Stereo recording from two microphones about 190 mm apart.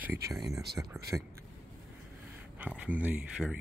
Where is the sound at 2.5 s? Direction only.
5° right (ahead or behind).